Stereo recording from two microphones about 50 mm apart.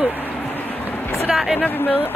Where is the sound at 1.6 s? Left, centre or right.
Left.